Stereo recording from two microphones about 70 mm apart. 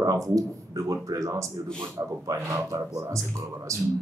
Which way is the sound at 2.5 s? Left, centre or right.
Right.